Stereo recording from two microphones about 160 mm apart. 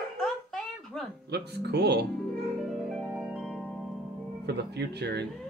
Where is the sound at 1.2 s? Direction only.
90° right.